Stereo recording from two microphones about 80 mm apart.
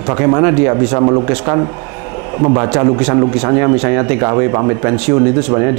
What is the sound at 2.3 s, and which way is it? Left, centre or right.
Speech, right.